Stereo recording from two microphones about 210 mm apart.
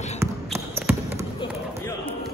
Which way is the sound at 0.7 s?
10° right (ahead or behind).